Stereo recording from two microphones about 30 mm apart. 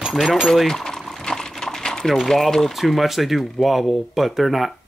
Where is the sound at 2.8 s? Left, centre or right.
Centre.